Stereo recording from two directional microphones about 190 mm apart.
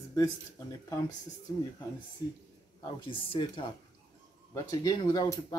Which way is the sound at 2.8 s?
25° left (ahead or behind).